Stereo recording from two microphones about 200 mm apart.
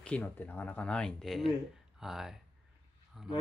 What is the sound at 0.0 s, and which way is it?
Speech, 5° left (ahead or behind).